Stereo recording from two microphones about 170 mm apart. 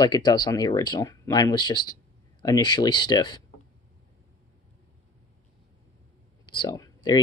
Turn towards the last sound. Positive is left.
turn(degrees=25)  # may be behind; listen again after turning